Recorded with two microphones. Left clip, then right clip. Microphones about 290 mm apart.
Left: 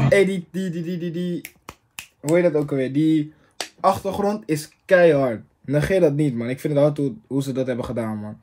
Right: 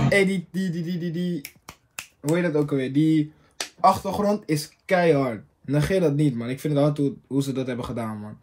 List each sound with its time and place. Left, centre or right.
0.1 s speech: centre